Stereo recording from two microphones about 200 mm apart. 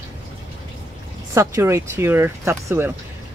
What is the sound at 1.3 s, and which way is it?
Speech, 15° right (ahead or behind).